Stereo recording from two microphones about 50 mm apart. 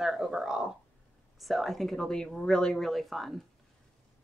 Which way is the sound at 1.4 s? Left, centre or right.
Centre.